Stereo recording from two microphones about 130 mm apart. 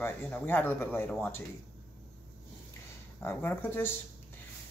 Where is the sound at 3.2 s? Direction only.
15° left (ahead or behind).